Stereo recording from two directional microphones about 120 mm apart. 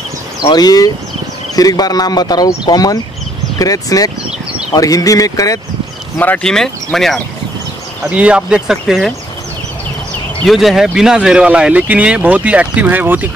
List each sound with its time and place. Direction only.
0.4 s speech: 35° left (ahead or behind)
6.1 s speech: 15° left (ahead or behind)
8.1 s speech: 10° right (ahead or behind)
10.4 s speech: centre (ahead or behind); by 13.3 s 15° right (ahead or behind)